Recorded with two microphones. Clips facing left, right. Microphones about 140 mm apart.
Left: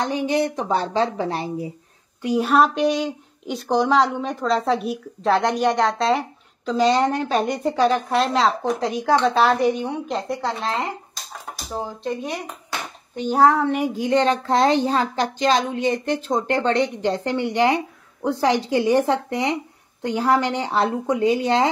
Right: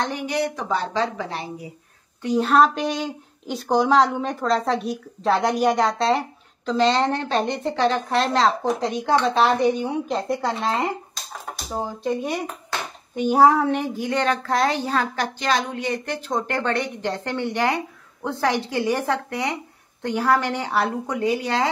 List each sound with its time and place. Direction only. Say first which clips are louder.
0.0 s speech: left 3 dB; 20° left (ahead or behind)
2.2 s a woman's voice: even; 10° left (ahead or behind)
13.7 s speech: left 4 dB; 15° left (ahead or behind)